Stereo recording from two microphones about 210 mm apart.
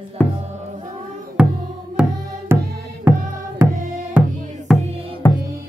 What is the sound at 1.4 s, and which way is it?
Music, 5° right (ahead or behind).